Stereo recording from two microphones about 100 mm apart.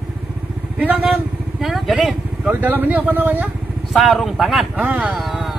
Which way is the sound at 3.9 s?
Centre (ahead or behind).